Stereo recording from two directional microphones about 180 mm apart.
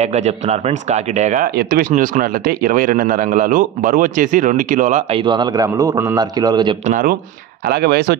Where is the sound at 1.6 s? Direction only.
55° right (ahead or behind).